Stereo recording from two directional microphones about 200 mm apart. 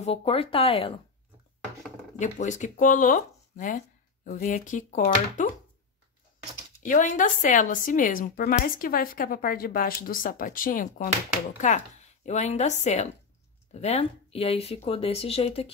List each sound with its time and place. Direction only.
0.0 s speech: 30° left (ahead or behind)
2.1 s speech: 40° left (ahead or behind)
6.8 s speech: 40° left (ahead or behind)